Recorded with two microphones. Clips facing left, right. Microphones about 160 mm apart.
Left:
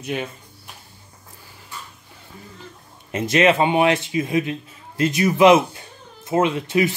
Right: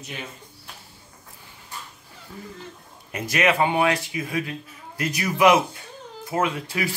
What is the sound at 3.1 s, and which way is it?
Speech, 25° left (ahead or behind).